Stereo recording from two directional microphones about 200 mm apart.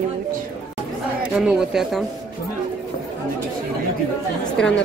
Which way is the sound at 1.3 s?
Centre (ahead or behind).